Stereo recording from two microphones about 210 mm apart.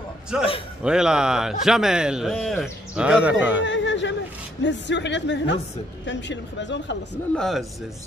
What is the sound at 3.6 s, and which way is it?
Speech, 60° left (ahead or behind).